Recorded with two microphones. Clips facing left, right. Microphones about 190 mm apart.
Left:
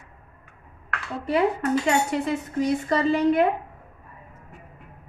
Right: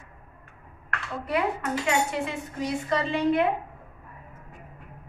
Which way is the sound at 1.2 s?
30° left (ahead or behind).